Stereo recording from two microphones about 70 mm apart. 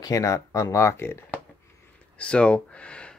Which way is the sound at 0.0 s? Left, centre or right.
Left.